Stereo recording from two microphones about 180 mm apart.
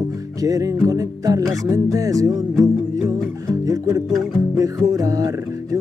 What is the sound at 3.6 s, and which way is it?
Music, 20° right (ahead or behind).